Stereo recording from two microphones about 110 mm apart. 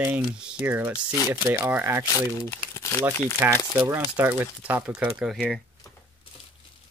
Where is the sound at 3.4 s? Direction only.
15° right (ahead or behind).